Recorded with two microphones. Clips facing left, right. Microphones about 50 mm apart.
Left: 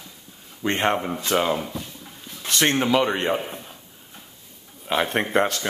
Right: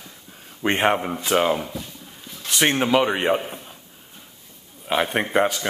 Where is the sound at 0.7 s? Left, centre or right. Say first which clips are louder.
Right 2 dB; centre.